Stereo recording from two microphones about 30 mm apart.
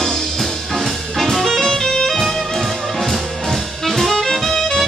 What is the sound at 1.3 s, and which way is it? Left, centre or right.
Music, centre.